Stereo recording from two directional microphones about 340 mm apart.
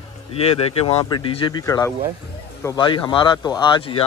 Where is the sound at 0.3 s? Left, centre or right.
Centre.